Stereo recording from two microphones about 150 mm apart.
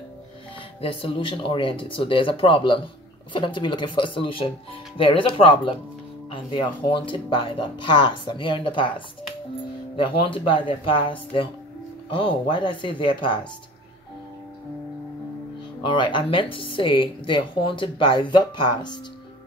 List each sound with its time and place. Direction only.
0.7 s speech: 35° left (ahead or behind)
10.2 s speech: 35° left (ahead or behind)
15.8 s speech: 30° left (ahead or behind)